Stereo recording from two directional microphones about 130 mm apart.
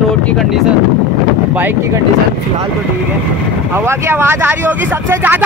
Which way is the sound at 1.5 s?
15° right (ahead or behind).